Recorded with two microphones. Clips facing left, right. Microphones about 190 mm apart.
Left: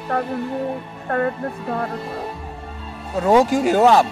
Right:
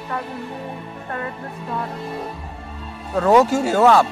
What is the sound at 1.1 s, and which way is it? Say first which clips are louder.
Speech: left 8 dB; 55° left (ahead or behind).